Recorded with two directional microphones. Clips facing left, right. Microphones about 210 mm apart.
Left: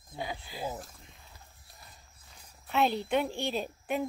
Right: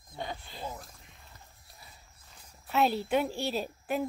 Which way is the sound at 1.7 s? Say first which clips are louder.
Even; centre (ahead or behind).